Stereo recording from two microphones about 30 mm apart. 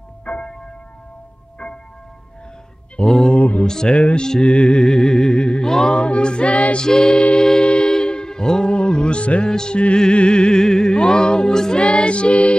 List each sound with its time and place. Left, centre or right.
0.2 s church bell: left
1.6 s tubular bells: left
3.0 s speech: left
3.3 s music: left
3.6 s music: left
3.9 s music: left
4.2 s music: left
5.9 s music: left
6.8 s music: left
7.6 s music: left
9.5 s music: left
10.1 s music: left
11.8 s music: left